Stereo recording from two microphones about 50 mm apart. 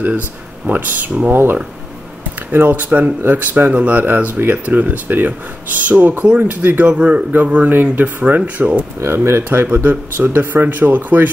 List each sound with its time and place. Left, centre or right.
0.7 s speech: right
6.9 s a man's voice: right
9.0 s speech: right